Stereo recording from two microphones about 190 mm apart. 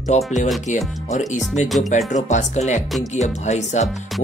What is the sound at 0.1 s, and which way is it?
Speech, 40° left (ahead or behind).